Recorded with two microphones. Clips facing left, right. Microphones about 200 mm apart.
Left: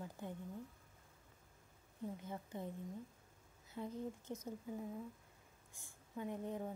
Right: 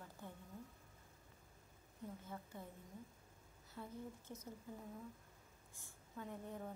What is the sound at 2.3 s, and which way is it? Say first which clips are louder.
Speech: left 5 dB; 20° left (ahead or behind).